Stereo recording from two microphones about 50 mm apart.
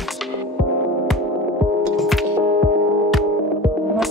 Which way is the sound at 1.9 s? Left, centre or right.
Centre.